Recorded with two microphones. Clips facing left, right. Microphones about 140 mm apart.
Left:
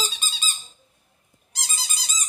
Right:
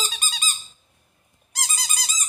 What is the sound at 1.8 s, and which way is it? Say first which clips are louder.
Squeak: right 3 dB; 80° right.